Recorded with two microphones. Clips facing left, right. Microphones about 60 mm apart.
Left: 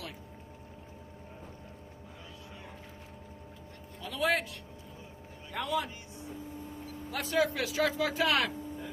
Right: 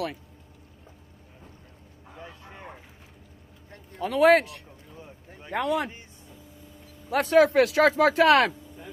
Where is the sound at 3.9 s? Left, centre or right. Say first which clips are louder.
Right 12 dB; right.